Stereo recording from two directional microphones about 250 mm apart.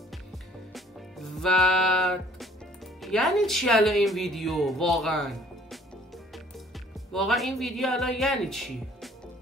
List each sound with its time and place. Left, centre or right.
0.7 s music: centre
3.0 s speech: centre